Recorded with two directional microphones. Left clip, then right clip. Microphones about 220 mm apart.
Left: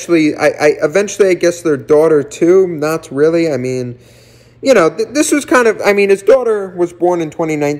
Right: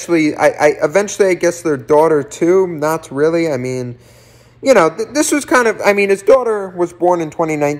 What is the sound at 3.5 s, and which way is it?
Speech, 25° left (ahead or behind).